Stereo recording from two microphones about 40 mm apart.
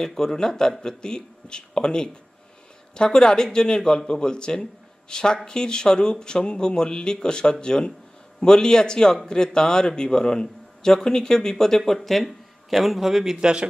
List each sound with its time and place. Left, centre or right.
0.0 s speech: centre; by 13.7 s right